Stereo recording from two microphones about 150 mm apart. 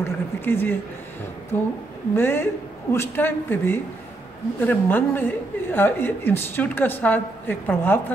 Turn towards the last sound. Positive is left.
turn(degrees=15)  # may be behind; listen again after turning